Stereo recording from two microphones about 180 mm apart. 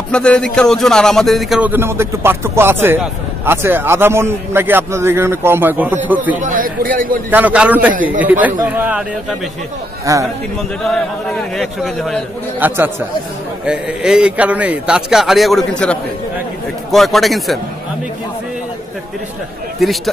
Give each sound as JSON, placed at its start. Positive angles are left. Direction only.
{"t": 0.1, "sound": "speech", "side_deg": 5}
{"t": 6.4, "sound": "a man's voice", "side_deg": -50}
{"t": 7.2, "sound": "speech", "side_deg": -10}
{"t": 10.1, "sound": "speech", "side_deg": -20}
{"t": 11.5, "sound": "a man's voice", "side_deg": 0}
{"t": 12.5, "sound": "a man's voice", "side_deg": -10}